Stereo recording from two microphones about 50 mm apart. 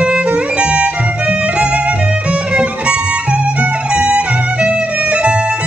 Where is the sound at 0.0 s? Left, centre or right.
Right.